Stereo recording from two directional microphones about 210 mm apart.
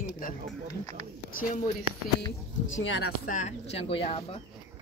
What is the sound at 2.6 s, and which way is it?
Speech, 65° left (ahead or behind).